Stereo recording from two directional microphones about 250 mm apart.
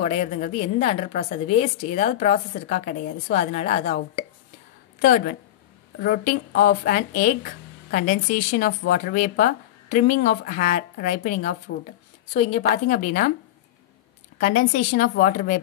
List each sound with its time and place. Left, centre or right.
0.0 s a woman's voice: left
14.4 s speech: left